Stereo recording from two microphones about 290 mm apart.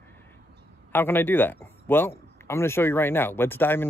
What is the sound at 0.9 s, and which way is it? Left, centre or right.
Speech, centre.